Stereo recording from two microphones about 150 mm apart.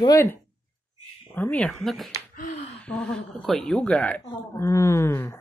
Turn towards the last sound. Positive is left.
turn(degrees=15)  # may be behind; listen again after turning